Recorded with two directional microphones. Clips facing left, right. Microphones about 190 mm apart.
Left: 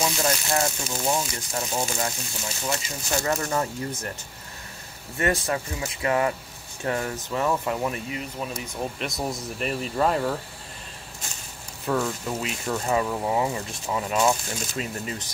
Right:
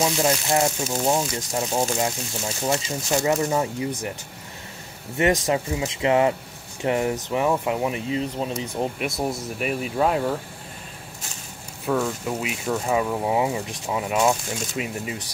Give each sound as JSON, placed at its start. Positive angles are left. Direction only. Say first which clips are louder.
{"t": 0.0, "sound": "speech", "louder": "right 4 dB", "side_deg": -20}
{"t": 5.1, "sound": "speech", "louder": "right 4 dB", "side_deg": -20}
{"t": 8.1, "sound": "speech", "louder": "right 6 dB", "side_deg": -30}
{"t": 9.2, "sound": "speech", "louder": "right 2 dB", "side_deg": -5}
{"t": 11.8, "sound": "speech", "louder": "right 2 dB", "side_deg": -5}